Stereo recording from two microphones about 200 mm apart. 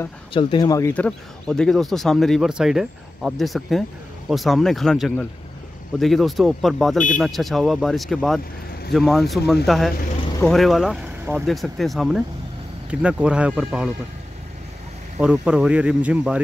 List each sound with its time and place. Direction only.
0.3 s speech: 25° left (ahead or behind); by 13.8 s 5° right (ahead or behind)
15.1 s speech: 5° right (ahead or behind)